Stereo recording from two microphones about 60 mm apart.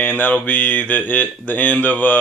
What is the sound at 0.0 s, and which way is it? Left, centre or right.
Speech, left.